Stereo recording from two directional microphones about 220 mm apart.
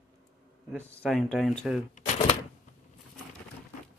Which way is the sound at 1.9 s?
30° left (ahead or behind).